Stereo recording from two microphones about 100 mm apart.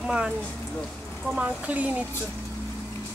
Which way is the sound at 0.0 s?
10° right (ahead or behind).